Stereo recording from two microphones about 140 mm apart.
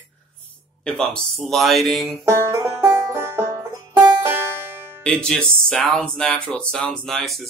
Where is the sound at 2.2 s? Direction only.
20° right (ahead or behind).